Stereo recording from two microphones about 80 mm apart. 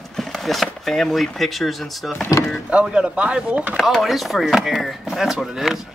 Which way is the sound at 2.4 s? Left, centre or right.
Left.